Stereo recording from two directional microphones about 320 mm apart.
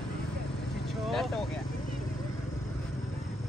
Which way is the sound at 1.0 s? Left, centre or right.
Centre.